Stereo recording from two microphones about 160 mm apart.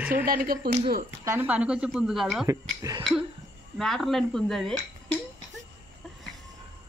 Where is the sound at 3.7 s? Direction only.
Centre (ahead or behind).